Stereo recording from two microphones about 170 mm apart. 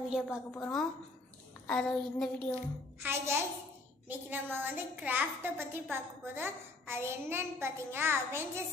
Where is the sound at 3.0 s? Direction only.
15° right (ahead or behind).